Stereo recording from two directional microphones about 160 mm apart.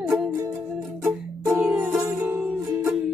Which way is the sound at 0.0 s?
10° right (ahead or behind).